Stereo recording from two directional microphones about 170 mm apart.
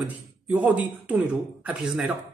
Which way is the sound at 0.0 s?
10° right (ahead or behind).